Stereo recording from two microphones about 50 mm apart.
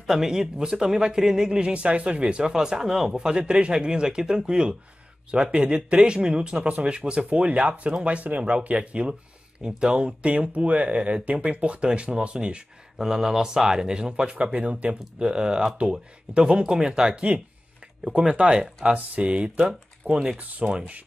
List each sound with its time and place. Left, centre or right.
0.0 s speech: centre; by 9.1 s right
9.7 s speech: centre
20.3 s speech: right